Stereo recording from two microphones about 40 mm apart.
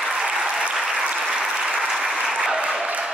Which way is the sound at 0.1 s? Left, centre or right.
Centre.